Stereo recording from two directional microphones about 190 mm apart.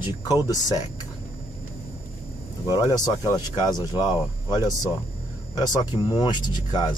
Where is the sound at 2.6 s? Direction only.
20° left (ahead or behind).